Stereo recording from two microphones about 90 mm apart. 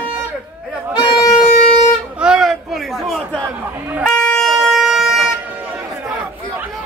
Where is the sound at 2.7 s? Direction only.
Centre (ahead or behind).